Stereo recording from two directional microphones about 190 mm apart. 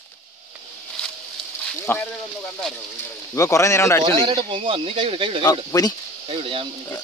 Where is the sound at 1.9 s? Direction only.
10° left (ahead or behind).